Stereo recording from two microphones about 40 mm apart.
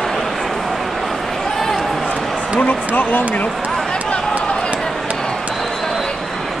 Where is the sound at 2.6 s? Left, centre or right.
Left.